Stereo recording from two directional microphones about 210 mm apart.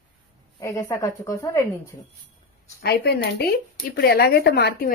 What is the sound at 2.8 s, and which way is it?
Speech, 50° left (ahead or behind).